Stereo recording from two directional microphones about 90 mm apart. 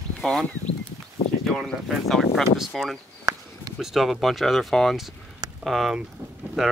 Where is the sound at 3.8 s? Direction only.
Centre (ahead or behind).